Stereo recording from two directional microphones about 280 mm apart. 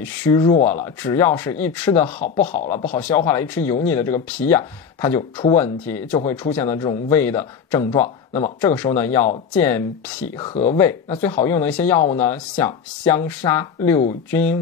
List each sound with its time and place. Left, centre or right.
0.2 s speech: centre
2.8 s speech: left
3.1 s speech: centre
8.5 s speech: centre
10.5 s speech: left
11.4 s speech: centre